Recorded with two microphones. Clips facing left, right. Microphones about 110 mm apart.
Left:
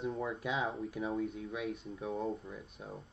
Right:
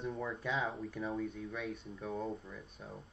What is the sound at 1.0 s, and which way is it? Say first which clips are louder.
Speech: left 2 dB; 25° left (ahead or behind).